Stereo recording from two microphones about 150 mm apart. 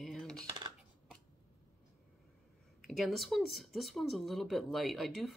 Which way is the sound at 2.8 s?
Centre (ahead or behind).